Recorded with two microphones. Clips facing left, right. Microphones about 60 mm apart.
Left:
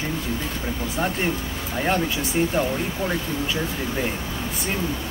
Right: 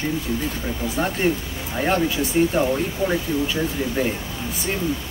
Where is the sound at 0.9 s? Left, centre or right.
Centre.